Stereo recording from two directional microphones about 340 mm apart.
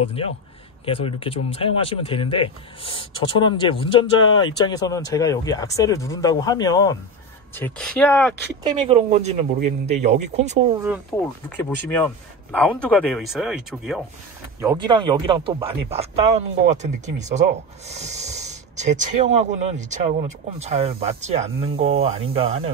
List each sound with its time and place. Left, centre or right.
0.0 s speech: centre
8.7 s speech: centre
11.1 s speech: centre